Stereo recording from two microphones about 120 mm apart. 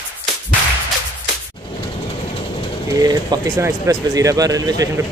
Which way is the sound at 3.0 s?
35° right (ahead or behind).